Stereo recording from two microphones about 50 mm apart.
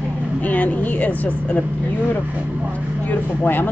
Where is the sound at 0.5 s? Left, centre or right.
Left.